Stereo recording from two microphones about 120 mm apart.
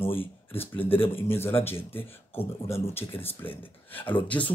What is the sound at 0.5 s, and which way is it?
Speech, 15° left (ahead or behind).